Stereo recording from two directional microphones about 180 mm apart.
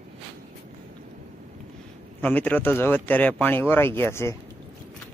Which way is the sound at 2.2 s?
10° left (ahead or behind).